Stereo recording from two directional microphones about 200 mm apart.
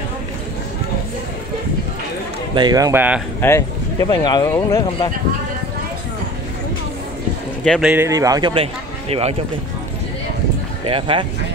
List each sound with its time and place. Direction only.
2.5 s speech: 20° right (ahead or behind)
3.3 s speech: 15° left (ahead or behind)
7.6 s speech: 5° left (ahead or behind)
7.9 s speech: 15° right (ahead or behind)
10.9 s speech: 25° right (ahead or behind)